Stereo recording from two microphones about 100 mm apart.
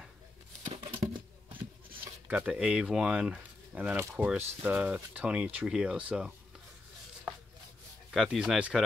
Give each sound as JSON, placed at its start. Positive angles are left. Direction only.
{"t": 0.7, "sound": "a sound", "side_deg": -60}
{"t": 2.2, "sound": "speech", "side_deg": -15}
{"t": 8.1, "sound": "speech", "side_deg": -5}